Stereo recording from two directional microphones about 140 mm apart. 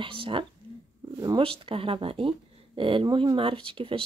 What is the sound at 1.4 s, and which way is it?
Speech, 40° right (ahead or behind).